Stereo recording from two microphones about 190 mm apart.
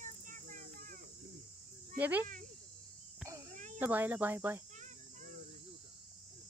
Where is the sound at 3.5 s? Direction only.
40° right (ahead or behind).